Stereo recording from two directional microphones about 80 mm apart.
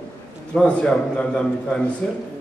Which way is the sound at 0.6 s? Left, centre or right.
Centre.